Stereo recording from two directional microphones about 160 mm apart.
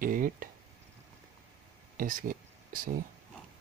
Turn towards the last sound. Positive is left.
turn(degrees=-60)  # may be behind; listen again after turning